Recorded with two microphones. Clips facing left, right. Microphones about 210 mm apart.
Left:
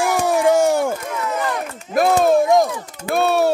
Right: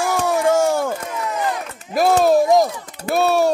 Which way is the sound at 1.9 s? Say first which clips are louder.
Even; centre (ahead or behind).